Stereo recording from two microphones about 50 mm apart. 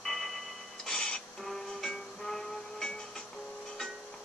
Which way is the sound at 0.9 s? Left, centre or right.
Centre.